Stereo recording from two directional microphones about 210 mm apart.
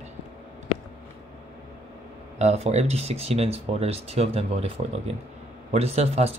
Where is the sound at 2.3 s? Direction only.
30° right (ahead or behind).